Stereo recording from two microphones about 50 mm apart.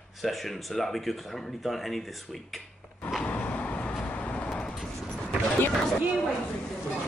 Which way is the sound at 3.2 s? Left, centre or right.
Left.